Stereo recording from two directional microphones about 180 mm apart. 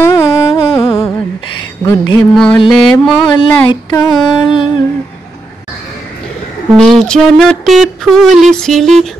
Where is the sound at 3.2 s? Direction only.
25° left (ahead or behind).